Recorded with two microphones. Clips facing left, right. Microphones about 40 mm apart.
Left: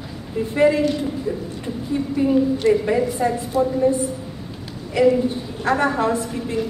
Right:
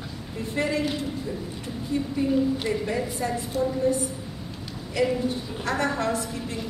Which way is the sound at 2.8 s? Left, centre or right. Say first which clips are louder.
Left 8 dB; centre.